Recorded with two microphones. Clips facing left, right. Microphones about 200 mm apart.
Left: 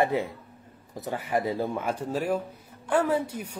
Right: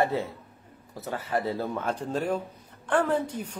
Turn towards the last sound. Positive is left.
turn(degrees=10)  # may be behind; listen again after turning